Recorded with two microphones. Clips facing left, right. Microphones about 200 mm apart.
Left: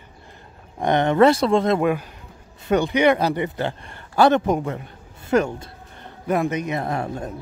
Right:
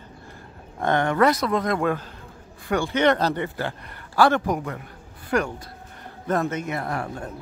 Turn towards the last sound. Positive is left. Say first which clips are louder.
# left 3 dB
turn(degrees=20)  # may be behind; listen again after turning